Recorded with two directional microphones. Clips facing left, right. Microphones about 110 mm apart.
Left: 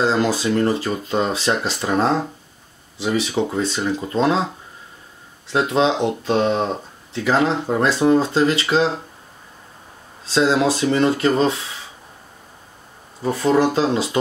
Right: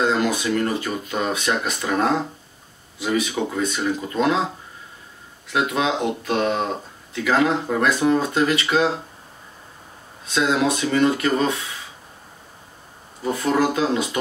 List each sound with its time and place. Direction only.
0.0 s speech: 30° left (ahead or behind)
5.5 s speech: 30° left (ahead or behind)
10.2 s speech: 30° left (ahead or behind)
13.2 s speech: 30° left (ahead or behind)